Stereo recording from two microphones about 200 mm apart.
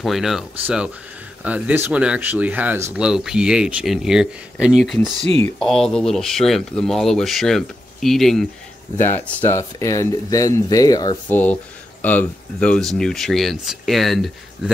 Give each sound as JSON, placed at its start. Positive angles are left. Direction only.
{"t": 0.0, "sound": "speech", "side_deg": 0}